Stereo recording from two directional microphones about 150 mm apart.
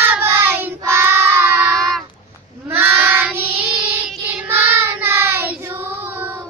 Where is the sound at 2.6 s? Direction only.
15° right (ahead or behind).